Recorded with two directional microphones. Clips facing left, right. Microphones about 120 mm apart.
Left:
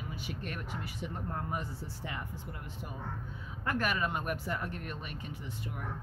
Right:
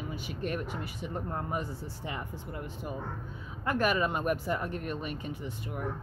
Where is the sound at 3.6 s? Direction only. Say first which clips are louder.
Right 5 dB; 20° right (ahead or behind).